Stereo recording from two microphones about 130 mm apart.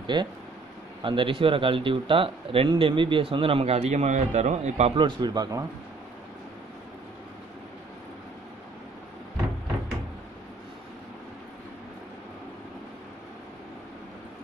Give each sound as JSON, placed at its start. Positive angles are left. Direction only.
{"t": 0.0, "sound": "speech", "side_deg": -35}
{"t": 4.9, "sound": "speech", "side_deg": -35}